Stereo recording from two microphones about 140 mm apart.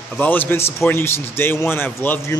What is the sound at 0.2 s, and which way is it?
A man's voice, 15° left (ahead or behind).